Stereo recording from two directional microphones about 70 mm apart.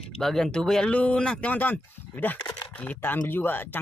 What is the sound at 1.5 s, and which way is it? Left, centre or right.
Speech, left.